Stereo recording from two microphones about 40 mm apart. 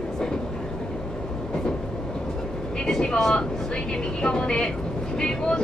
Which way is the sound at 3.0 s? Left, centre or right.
Centre.